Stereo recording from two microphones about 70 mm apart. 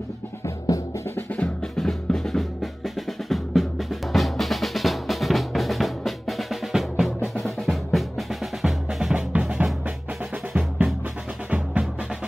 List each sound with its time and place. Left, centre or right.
0.7 s drum: left
1.1 s music: left
1.8 s drum: centre
7.3 s music: centre
9.3 s drum: centre
10.5 s music: centre